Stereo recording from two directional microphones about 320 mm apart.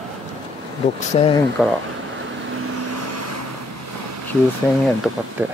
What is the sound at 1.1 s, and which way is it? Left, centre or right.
Speech, centre.